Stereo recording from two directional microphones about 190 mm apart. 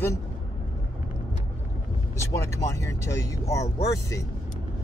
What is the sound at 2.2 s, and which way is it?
Speech, 15° left (ahead or behind).